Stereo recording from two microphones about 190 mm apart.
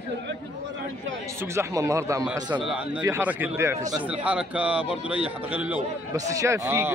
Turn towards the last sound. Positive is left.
turn(degrees=-10)  # may be behind; listen again after turning